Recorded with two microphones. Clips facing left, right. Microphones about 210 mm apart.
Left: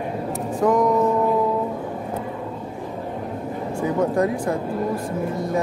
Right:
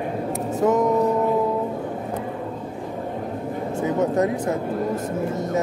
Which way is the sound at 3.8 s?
20° right (ahead or behind).